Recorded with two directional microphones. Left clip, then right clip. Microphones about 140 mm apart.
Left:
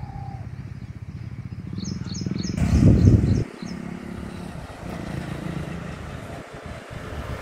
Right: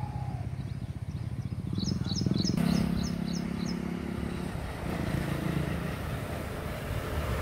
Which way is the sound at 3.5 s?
50° left (ahead or behind).